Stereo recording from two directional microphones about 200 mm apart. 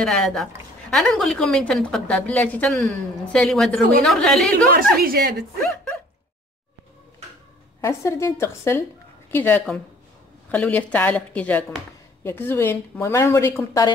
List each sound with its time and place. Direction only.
0.0 s a woman's voice: 5° left (ahead or behind)
5.0 s a woman's voice: 50° right (ahead or behind)
7.8 s speech: 15° left (ahead or behind)